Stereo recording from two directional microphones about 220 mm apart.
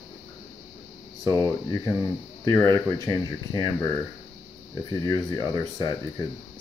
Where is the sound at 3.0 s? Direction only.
15° left (ahead or behind).